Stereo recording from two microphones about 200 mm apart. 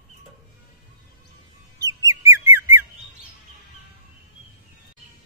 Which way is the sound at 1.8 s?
15° right (ahead or behind).